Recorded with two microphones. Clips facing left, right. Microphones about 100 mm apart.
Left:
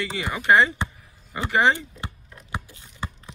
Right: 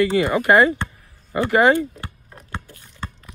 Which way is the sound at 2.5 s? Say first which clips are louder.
Even; 15° left (ahead or behind).